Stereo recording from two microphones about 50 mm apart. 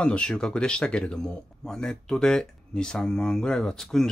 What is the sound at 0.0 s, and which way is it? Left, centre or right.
Speech, left.